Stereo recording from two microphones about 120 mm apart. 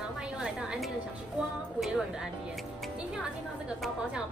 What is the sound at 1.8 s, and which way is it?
Music, 5° right (ahead or behind).